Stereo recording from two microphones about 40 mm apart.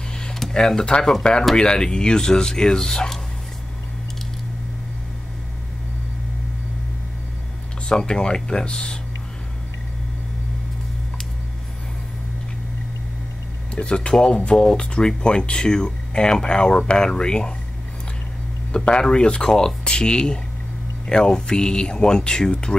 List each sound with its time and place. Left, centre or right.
0.5 s speech: centre
7.9 s speech: left
13.7 s speech: left
18.9 s speech: left